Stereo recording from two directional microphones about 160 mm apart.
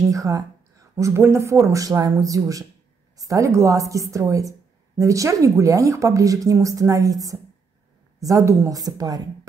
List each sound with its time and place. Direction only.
0.1 s a woman's voice: 20° right (ahead or behind)